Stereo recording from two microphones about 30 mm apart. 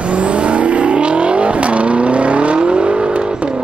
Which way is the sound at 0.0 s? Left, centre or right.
Right.